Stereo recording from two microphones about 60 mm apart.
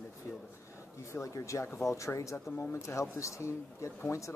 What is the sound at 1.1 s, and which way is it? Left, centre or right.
Speech, left.